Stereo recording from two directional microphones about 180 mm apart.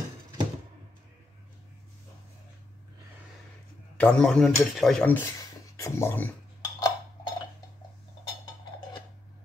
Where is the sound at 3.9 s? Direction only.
5° left (ahead or behind).